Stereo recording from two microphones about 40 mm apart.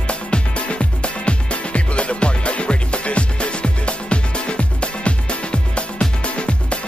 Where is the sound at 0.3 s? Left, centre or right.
Left.